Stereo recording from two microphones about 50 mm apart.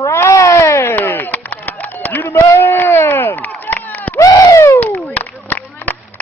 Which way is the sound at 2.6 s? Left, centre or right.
Left.